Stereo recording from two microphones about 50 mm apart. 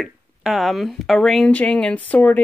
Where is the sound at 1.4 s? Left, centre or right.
Left.